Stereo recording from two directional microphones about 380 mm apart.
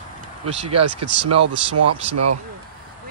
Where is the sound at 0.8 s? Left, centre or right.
Right.